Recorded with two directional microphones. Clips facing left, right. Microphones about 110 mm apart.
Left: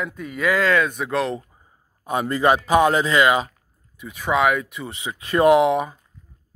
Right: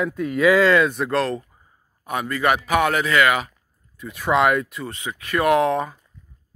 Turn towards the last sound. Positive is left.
turn(degrees=15)  # may be behind; listen again after turning